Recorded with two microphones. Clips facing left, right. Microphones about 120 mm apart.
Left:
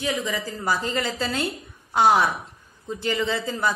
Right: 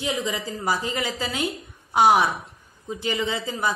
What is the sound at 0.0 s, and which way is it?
Speech, 20° right (ahead or behind).